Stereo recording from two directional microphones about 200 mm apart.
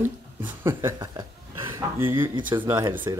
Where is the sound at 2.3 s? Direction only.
25° right (ahead or behind).